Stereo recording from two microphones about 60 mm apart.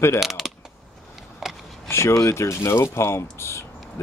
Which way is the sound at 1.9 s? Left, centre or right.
Left.